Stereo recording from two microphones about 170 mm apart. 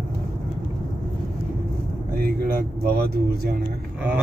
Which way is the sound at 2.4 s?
55° right (ahead or behind).